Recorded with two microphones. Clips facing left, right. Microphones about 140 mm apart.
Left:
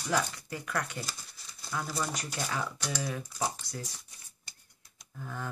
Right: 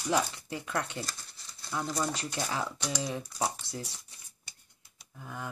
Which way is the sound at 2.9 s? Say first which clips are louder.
Even; 20° right (ahead or behind).